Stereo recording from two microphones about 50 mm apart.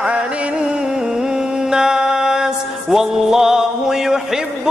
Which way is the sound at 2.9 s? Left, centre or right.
Centre.